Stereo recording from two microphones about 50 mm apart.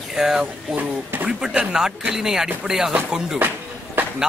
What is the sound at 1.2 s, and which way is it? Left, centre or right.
Speech, right.